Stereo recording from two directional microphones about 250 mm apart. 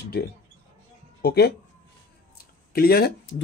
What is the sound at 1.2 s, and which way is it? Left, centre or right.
Speech, left.